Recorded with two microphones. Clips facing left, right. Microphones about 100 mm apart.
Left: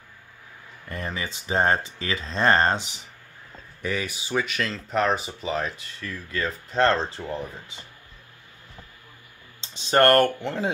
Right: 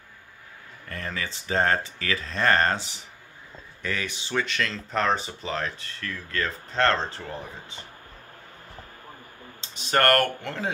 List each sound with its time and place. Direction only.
0.8 s speech: 15° left (ahead or behind)
9.6 s speech: 25° left (ahead or behind)